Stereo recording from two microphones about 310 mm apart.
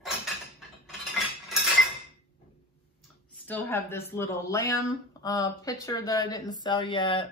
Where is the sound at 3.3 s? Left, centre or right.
Centre.